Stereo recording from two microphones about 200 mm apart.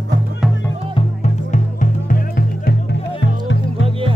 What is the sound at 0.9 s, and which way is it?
Music, 35° left (ahead or behind).